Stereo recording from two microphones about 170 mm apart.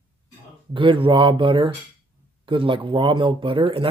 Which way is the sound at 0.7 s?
30° right (ahead or behind).